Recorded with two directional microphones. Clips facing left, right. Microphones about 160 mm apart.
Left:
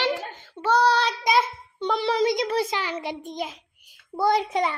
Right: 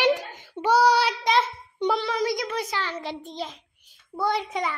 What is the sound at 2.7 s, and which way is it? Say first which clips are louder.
Speech: left 2 dB; 15° left (ahead or behind).